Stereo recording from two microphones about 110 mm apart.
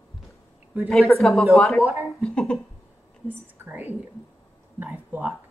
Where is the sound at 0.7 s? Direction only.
15° right (ahead or behind).